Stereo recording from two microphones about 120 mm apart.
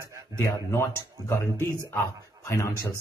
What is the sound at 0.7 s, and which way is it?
Speech, 25° left (ahead or behind).